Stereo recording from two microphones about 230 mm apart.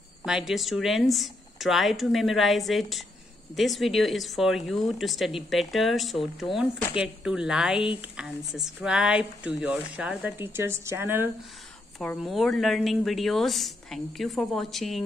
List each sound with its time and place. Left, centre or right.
0.2 s speech: centre
12.0 s speech: centre